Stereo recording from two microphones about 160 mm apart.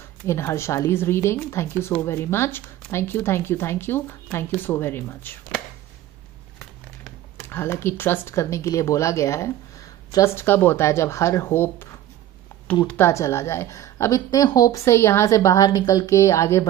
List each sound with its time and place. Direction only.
0.3 s speech: 15° left (ahead or behind)
7.4 s a woman's voice: 15° left (ahead or behind)